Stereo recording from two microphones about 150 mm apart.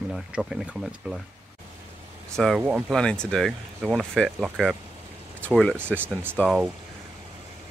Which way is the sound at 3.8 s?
10° right (ahead or behind).